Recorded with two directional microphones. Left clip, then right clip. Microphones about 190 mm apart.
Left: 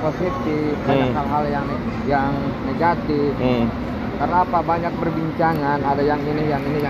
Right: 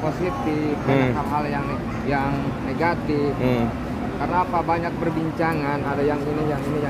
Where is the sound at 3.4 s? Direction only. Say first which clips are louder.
Left 2 dB; 5° right (ahead or behind).